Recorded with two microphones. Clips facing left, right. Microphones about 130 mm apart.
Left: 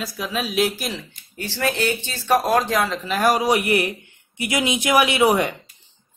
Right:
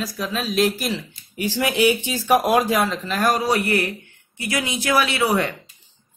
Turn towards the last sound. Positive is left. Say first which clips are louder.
# left 3 dB
turn(degrees=15)  # may be behind; listen again after turning